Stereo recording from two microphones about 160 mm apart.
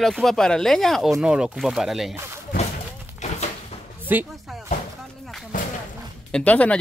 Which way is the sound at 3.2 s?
45° left (ahead or behind).